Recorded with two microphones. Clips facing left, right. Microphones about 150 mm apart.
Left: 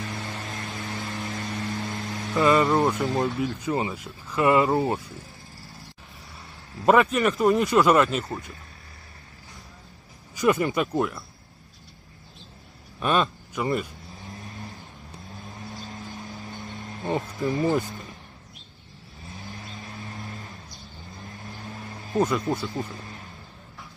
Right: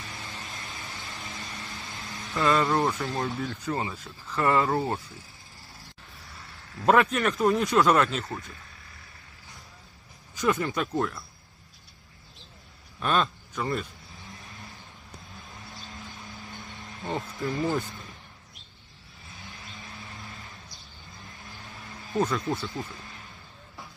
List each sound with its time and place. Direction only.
0.0 s vehicle: 50° left (ahead or behind)
2.3 s speech: centre (ahead or behind)
3.6 s speech: 15° left (ahead or behind)
6.3 s a sound: 20° left (ahead or behind)
6.9 s speech: centre (ahead or behind)
10.3 s speech: 5° left (ahead or behind)
13.0 s speech: 10° left (ahead or behind)
15.8 s insect: 20° left (ahead or behind)
22.4 s speech: 25° left (ahead or behind)